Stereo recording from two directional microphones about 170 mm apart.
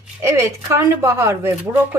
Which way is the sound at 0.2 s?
15° right (ahead or behind).